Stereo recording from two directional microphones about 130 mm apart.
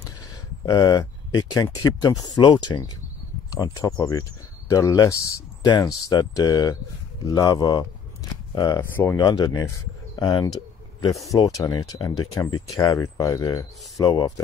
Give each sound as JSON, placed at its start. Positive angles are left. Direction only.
{"t": 0.7, "sound": "speech", "side_deg": 30}